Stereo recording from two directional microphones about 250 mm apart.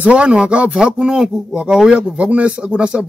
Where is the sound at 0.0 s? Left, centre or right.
Centre.